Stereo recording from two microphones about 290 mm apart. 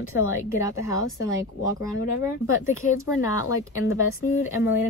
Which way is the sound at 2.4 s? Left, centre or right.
Left.